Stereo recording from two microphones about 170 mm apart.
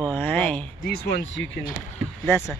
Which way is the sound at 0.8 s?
65° left (ahead or behind).